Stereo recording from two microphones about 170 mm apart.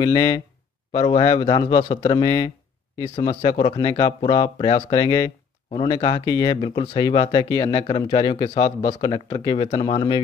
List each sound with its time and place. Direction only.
0.0 s speech: 20° left (ahead or behind)